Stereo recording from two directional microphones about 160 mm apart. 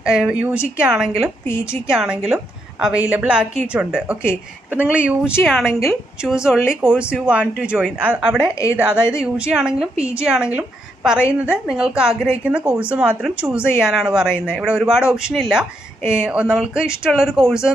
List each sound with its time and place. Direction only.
0.0 s speech: 5° right (ahead or behind)
1.5 s a woman's voice: 15° left (ahead or behind)
1.9 s a woman's voice: 5° right (ahead or behind)